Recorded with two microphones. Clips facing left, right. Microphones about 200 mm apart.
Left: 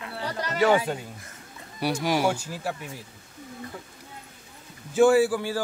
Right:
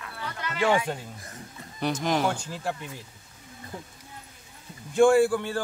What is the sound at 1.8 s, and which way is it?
Speech, 10° left (ahead or behind).